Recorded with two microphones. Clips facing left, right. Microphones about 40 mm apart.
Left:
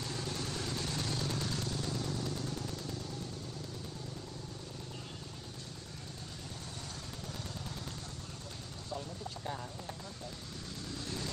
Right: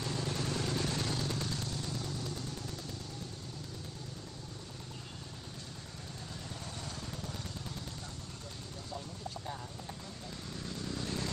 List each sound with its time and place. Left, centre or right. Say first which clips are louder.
0.0 s vehicle: right 3 dB; centre
1.2 s vehicle: even; centre